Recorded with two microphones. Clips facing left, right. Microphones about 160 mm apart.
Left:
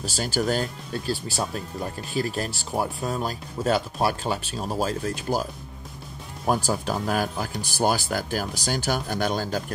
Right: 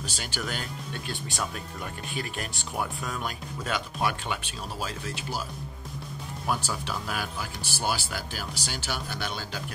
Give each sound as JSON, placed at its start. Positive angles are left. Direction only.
{"t": 0.1, "sound": "speech", "side_deg": 40}